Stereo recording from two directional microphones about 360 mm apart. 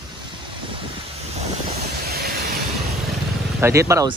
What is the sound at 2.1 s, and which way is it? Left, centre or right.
Vehicle, right.